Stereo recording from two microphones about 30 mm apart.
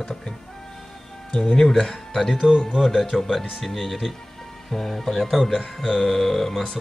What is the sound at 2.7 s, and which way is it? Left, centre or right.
Speech, centre.